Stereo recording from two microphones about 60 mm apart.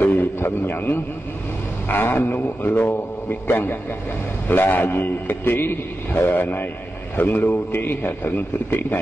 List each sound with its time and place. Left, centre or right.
0.0 s a man's voice: left